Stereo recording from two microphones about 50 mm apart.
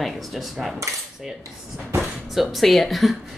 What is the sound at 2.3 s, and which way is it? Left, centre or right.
Speech, centre.